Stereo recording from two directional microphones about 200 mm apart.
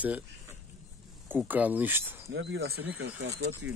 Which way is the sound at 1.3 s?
10° right (ahead or behind).